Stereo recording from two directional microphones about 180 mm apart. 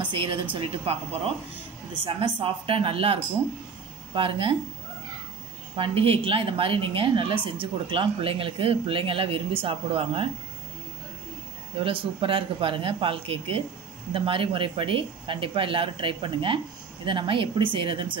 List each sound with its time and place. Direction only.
0.0 s speech: 30° right (ahead or behind)
5.8 s speech: 30° right (ahead or behind)
11.8 s speech: 30° right (ahead or behind)